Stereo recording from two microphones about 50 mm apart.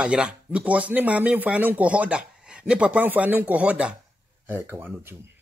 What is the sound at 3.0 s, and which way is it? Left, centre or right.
Speech, right.